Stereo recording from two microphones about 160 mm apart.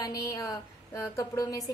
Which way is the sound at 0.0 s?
20° left (ahead or behind).